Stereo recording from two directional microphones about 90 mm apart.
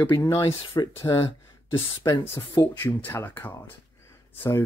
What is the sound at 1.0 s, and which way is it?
Speech, 40° left (ahead or behind).